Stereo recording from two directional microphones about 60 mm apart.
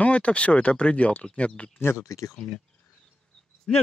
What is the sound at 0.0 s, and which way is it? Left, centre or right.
Speech, left.